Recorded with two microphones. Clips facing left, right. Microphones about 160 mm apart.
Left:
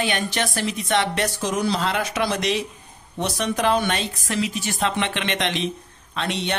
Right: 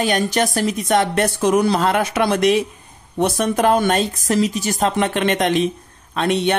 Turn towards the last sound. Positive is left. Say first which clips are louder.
# right 8 dB
turn(degrees=-50)  # may be behind; listen again after turning